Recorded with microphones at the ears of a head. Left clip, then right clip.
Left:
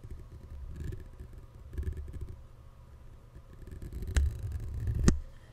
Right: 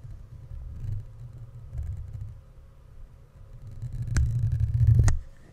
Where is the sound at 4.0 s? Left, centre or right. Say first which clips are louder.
Right 5 dB; right.